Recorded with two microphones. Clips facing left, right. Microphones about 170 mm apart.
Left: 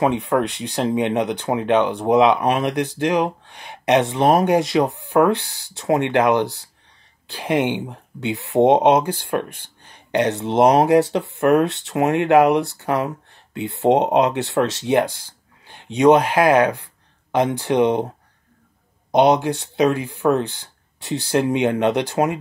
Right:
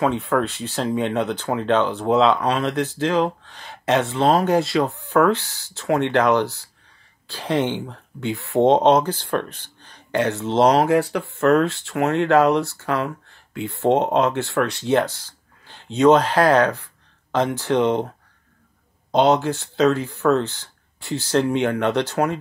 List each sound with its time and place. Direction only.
0.0 s speech: 15° left (ahead or behind)
19.1 s speech: 15° left (ahead or behind)